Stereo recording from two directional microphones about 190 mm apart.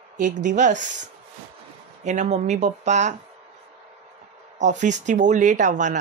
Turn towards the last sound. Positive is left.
turn(degrees=-40)  # may be behind; listen again after turning